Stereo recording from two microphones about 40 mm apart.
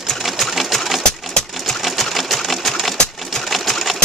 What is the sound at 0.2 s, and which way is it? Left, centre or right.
Sewing machine, centre.